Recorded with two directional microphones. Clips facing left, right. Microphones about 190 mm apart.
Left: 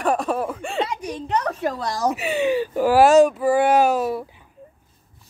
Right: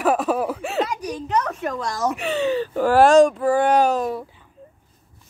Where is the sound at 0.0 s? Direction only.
5° right (ahead or behind).